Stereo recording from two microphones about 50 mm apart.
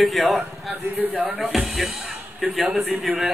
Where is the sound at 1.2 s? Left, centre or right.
Right.